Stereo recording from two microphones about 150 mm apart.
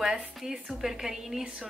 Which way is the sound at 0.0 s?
5° right (ahead or behind).